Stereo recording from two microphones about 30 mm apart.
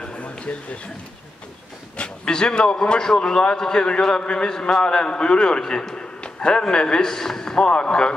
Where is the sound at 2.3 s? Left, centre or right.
Left.